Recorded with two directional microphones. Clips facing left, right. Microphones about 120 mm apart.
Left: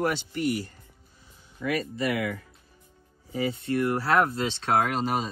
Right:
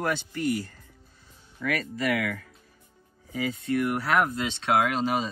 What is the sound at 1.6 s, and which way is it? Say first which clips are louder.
Speech: even; 25° left (ahead or behind).